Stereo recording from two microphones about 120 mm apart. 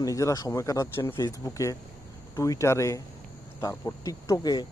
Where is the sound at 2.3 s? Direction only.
25° left (ahead or behind).